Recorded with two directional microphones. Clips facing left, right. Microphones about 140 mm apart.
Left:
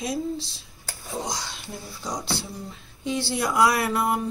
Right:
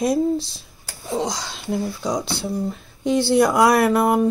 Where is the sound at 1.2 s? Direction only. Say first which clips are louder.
Right 4 dB; 90° right.